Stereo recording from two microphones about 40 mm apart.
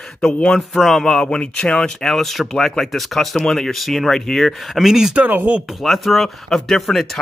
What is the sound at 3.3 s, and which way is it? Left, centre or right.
Speech, centre.